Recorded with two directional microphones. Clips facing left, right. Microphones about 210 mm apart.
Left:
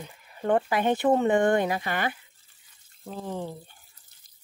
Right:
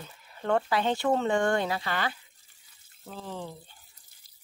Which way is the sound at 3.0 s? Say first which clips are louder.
Left 5 dB; 25° left (ahead or behind).